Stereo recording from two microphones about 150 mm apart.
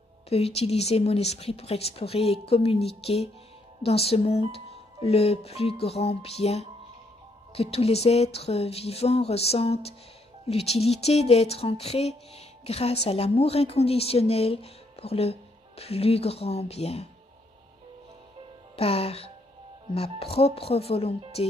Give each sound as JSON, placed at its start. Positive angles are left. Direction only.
{"t": 0.6, "sound": "speech", "side_deg": 45}
{"t": 18.8, "sound": "speech", "side_deg": 40}